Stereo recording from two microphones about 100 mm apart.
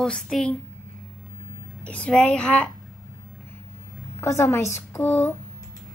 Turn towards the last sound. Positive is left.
turn(degrees=25)  # may be behind; listen again after turning